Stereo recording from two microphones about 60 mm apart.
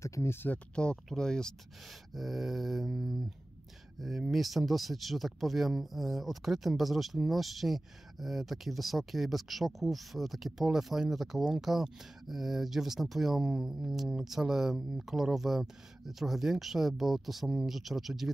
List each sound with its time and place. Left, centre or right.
0.0 s speech: left
1.0 s speech: centre
1.9 s speech: centre